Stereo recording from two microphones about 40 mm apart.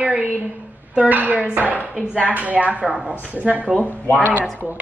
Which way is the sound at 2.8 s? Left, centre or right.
Centre.